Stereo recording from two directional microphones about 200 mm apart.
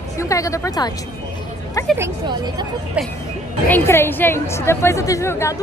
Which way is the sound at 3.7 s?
10° left (ahead or behind).